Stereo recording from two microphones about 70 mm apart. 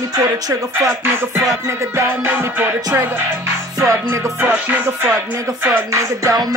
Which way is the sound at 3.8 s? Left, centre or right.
Right.